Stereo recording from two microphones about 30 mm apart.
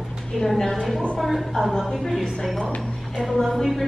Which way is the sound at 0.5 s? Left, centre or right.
Left.